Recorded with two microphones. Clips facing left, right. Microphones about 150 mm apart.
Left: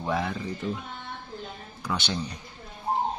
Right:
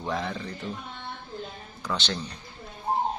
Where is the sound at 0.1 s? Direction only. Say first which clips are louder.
Left 2 dB; 5° left (ahead or behind).